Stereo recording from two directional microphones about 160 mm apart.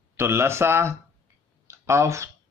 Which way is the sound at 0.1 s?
15° right (ahead or behind).